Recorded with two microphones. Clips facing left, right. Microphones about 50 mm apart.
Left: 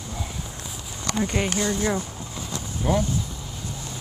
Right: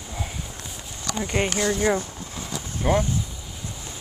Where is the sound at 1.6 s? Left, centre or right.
Centre.